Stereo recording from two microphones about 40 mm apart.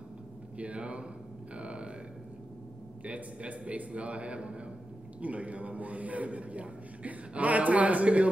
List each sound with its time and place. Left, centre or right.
0.6 s a man's voice: right
1.5 s music: right
3.0 s a man's voice: right